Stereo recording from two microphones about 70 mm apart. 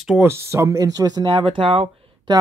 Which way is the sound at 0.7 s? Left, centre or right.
Right.